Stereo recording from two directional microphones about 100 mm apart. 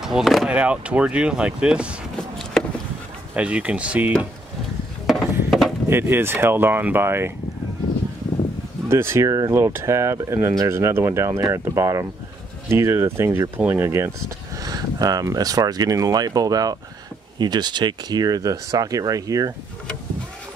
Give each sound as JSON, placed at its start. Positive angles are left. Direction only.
{"t": 0.0, "sound": "speech", "side_deg": -5}
{"t": 0.5, "sound": "speech", "side_deg": -15}
{"t": 3.3, "sound": "speech", "side_deg": -15}
{"t": 5.0, "sound": "a sound", "side_deg": 0}
{"t": 5.9, "sound": "speech", "side_deg": -25}
{"t": 8.8, "sound": "speech", "side_deg": -25}
{"t": 14.6, "sound": "speech", "side_deg": -40}